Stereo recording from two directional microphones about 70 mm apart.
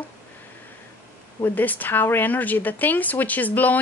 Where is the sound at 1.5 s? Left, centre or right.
Left.